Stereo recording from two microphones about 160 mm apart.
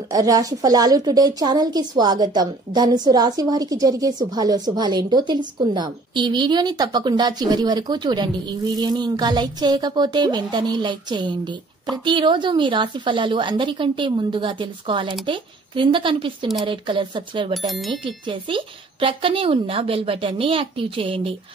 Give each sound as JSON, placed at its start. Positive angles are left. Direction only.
{"t": 0.1, "sound": "a woman's voice", "side_deg": -20}
{"t": 17.6, "sound": "speech", "side_deg": 0}
{"t": 18.0, "sound": "speech", "side_deg": -30}